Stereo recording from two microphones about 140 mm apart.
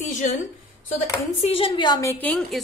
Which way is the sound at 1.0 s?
45° left (ahead or behind).